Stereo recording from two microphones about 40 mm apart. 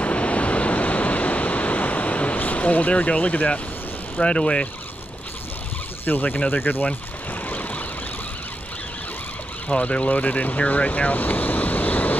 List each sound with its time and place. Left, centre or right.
0.0 s waves: left
4.2 s speech: left
6.0 s speech: left
7.4 s vehicle: left
9.7 s speech: left
10.7 s vehicle: left